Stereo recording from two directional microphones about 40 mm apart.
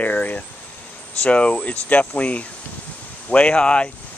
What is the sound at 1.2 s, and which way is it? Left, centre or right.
Speech, left.